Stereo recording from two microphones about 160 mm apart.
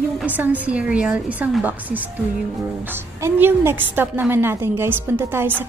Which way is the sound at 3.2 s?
15° right (ahead or behind).